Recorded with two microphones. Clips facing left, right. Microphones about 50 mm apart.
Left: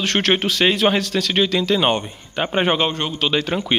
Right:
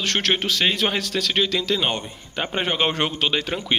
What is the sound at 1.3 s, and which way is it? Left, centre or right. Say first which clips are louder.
A man's voice: left 5 dB; centre.